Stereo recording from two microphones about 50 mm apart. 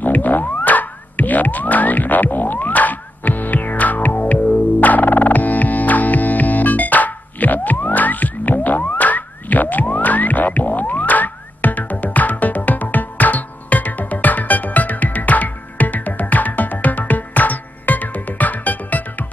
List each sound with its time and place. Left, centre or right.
0.0 s music: left